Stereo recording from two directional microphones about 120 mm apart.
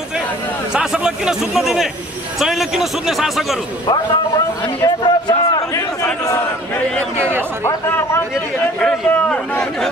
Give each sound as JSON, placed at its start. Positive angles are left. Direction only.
{"t": 0.7, "sound": "a man's voice", "side_deg": -5}
{"t": 3.8, "sound": "a man's voice", "side_deg": 40}
{"t": 8.8, "sound": "a man's voice", "side_deg": 5}